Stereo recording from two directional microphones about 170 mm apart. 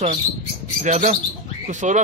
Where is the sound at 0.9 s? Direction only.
50° right (ahead or behind).